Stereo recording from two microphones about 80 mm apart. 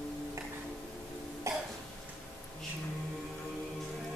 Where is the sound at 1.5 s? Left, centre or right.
Right.